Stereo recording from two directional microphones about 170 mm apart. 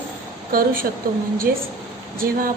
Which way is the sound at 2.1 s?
60° right (ahead or behind).